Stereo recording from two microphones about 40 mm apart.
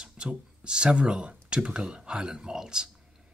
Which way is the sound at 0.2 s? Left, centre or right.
Right.